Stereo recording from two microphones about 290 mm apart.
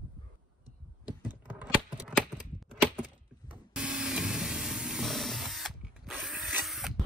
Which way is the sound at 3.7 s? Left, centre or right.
Centre.